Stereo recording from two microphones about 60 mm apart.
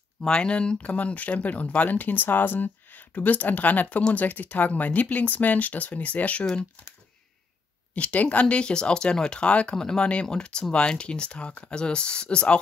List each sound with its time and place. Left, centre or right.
0.2 s speech: centre
6.4 s speech: centre
7.9 s speech: left